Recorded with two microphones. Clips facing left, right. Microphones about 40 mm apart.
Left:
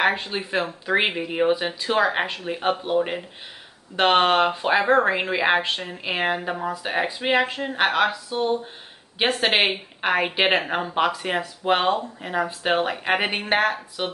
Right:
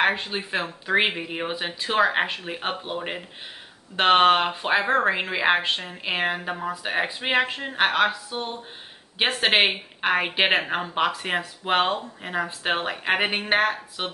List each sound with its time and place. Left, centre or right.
0.0 s speech: centre
1.8 s speech: right